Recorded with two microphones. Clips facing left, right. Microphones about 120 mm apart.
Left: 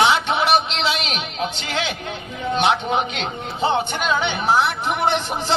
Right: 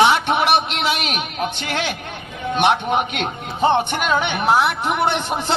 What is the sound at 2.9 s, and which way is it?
A man's voice, 50° right (ahead or behind).